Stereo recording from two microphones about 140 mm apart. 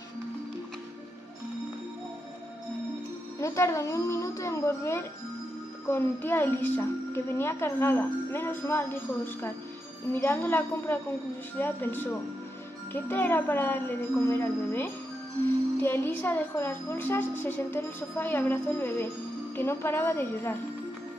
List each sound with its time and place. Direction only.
3.3 s a woman's voice: 20° left (ahead or behind)